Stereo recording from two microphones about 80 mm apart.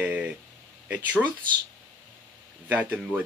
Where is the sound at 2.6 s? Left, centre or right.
Centre.